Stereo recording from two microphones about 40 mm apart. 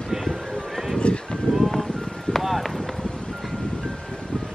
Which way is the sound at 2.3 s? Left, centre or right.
Centre.